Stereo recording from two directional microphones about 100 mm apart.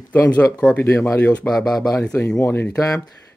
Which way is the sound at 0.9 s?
25° left (ahead or behind).